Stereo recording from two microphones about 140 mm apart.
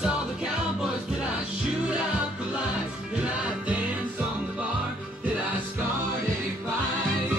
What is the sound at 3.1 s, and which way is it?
Music, 10° right (ahead or behind).